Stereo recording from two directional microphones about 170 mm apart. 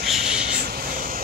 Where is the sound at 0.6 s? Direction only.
60° right (ahead or behind).